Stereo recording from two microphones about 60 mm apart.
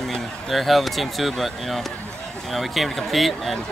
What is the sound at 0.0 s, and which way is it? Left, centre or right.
Speech, centre.